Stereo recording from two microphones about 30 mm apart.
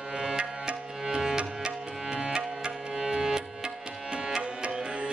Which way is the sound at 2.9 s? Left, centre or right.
Centre.